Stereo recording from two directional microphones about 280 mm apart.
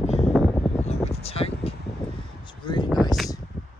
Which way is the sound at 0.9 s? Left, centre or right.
Left.